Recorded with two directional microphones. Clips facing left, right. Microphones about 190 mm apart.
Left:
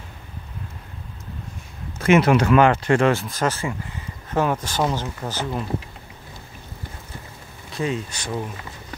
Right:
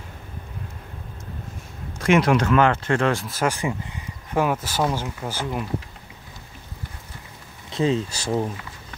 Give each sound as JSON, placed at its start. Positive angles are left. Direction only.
{"t": 2.0, "sound": "speech", "side_deg": 5}
{"t": 7.7, "sound": "speech", "side_deg": -25}